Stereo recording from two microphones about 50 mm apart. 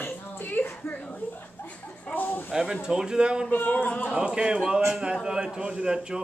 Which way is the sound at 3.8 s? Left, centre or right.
Left.